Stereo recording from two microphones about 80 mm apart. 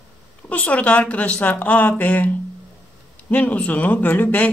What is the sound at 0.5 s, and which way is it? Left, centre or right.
Speech, centre.